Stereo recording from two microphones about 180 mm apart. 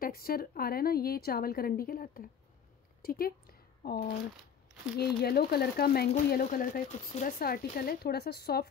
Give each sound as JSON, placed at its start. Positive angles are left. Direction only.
{"t": 0.0, "sound": "a woman's voice", "side_deg": 55}